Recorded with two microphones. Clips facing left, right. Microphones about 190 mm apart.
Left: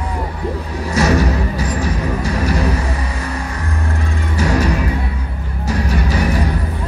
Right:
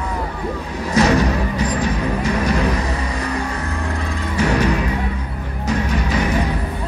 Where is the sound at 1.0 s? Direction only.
35° left (ahead or behind).